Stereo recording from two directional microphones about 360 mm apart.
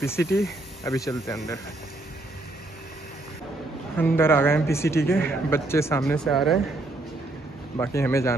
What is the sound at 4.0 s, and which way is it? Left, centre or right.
Speech, centre.